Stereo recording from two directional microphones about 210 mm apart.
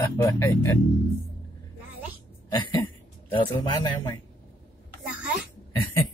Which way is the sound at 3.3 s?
20° left (ahead or behind).